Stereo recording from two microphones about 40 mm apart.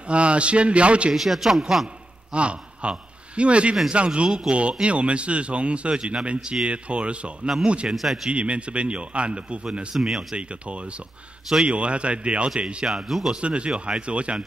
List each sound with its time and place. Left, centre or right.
0.1 s speech: right
1.1 s a man's voice: centre
2.3 s a man's voice: right
7.9 s a man's voice: centre
8.3 s speech: right
9.9 s speech: centre
10.3 s speech: right
12.8 s speech: centre
13.3 s speech: right